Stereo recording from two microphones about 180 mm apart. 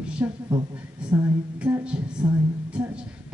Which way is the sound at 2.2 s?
5° right (ahead or behind).